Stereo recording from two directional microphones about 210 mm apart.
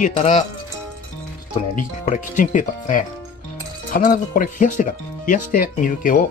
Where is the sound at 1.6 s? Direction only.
30° left (ahead or behind).